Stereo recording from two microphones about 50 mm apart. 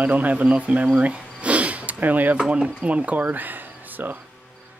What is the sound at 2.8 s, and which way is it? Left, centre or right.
Speech, right.